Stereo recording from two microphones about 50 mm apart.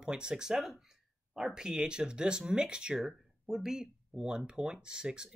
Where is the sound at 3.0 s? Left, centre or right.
Centre.